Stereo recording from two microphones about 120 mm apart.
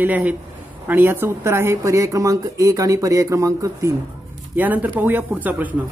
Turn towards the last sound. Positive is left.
turn(degrees=-15)  # may be behind; listen again after turning